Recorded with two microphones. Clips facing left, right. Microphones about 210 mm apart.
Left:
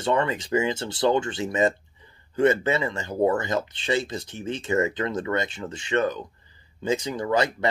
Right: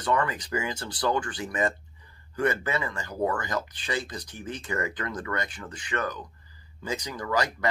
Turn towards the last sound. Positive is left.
turn(degrees=25)  # may be behind; listen again after turning